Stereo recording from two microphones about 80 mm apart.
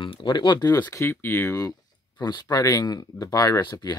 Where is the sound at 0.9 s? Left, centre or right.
Left.